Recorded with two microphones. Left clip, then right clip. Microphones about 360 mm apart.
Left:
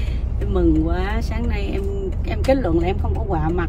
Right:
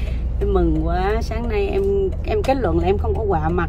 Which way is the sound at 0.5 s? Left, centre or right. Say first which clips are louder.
Left 1 dB; centre.